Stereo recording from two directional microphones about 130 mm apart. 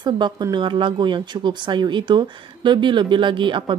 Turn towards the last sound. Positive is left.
turn(degrees=-40)  # may be behind; listen again after turning